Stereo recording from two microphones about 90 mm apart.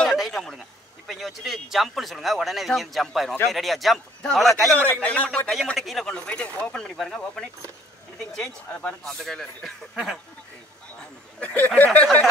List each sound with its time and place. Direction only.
0.0 s a man's voice: centre (ahead or behind)
4.7 s speech: 20° left (ahead or behind)
5.8 s speech: centre (ahead or behind)
8.3 s speech: 10° left (ahead or behind)
11.0 s speech: 15° left (ahead or behind)